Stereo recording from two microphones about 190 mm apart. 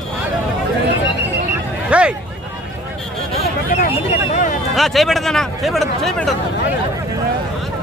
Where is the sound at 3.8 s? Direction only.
40° left (ahead or behind).